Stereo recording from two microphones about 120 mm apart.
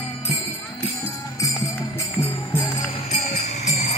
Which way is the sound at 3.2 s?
65° left (ahead or behind).